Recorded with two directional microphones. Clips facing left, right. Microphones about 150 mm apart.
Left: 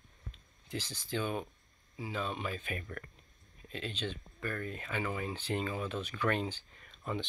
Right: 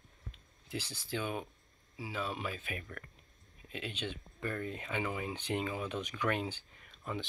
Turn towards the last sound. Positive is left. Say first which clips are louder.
# left 1 dB
turn(degrees=-10)  # may be behind; listen again after turning